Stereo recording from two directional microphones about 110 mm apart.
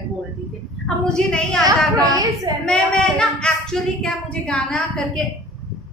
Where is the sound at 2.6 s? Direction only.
10° left (ahead or behind).